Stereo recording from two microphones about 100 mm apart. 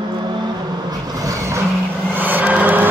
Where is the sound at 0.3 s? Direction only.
45° right (ahead or behind).